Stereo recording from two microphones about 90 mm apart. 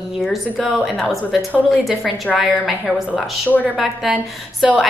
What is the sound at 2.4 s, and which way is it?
Speech, 5° right (ahead or behind).